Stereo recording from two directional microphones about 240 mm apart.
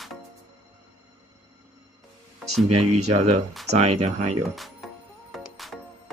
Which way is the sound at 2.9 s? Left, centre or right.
Right.